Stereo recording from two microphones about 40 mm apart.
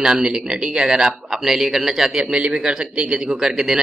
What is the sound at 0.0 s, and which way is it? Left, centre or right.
Speech, centre.